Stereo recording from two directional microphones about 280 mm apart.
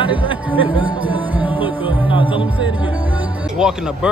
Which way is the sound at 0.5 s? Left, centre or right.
Centre.